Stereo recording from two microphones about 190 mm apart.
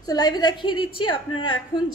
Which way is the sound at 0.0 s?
20° left (ahead or behind).